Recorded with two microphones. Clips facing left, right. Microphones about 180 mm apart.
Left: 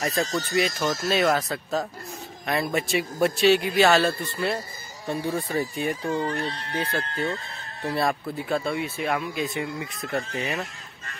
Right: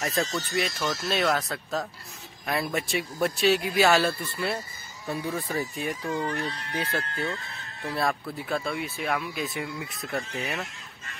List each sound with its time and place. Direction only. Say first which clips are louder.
0.0 s speech: left 2 dB; centre (ahead or behind)
5.3 s speech: left 3 dB; centre (ahead or behind)
6.0 s speech: left 3 dB; 30° left (ahead or behind)
7.9 s speech: left 3 dB; centre (ahead or behind)